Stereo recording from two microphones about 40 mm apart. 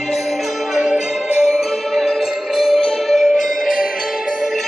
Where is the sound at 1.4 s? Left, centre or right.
Centre.